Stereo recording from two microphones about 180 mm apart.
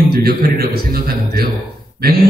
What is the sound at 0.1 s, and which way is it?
A man's voice, 60° right (ahead or behind).